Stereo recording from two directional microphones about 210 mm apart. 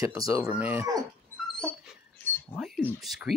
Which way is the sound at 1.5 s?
Centre (ahead or behind).